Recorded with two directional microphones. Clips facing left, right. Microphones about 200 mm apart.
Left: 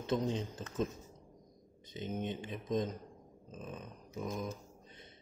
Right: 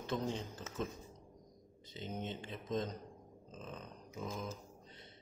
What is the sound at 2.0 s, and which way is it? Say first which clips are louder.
Speech: left 4 dB; 15° left (ahead or behind).